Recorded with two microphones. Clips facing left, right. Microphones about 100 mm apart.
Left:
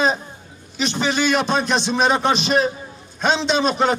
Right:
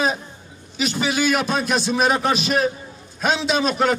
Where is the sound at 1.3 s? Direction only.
30° left (ahead or behind).